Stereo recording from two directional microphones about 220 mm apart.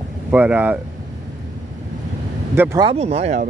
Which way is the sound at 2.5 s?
10° right (ahead or behind).